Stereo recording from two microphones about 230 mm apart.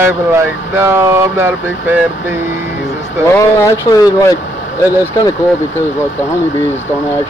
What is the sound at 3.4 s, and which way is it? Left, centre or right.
Speech, centre.